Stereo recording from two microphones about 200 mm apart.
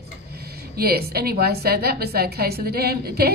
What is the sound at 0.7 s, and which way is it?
A woman's voice, 50° right (ahead or behind).